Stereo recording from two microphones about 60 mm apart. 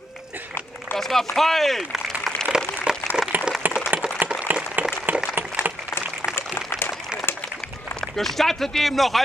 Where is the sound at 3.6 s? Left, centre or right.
Right.